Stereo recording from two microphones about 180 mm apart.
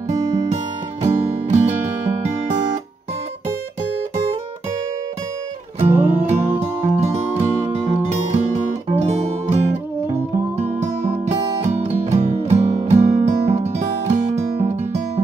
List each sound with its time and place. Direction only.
1.0 s music: 40° right (ahead or behind)
5.9 s music: 15° right (ahead or behind)
6.2 s music: 35° right (ahead or behind)
10.6 s music: 40° right (ahead or behind)